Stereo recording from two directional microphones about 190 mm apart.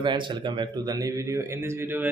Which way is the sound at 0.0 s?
25° right (ahead or behind).